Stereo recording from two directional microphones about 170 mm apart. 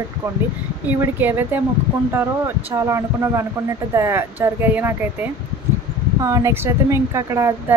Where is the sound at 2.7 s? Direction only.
20° right (ahead or behind).